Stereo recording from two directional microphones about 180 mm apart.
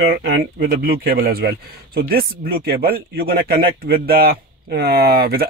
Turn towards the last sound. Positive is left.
turn(degrees=-55)  # may be behind; listen again after turning